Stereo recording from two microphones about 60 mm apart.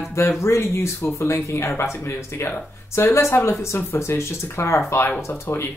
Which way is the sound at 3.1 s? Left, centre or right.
Left.